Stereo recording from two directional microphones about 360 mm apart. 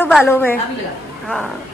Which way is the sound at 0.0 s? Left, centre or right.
Centre.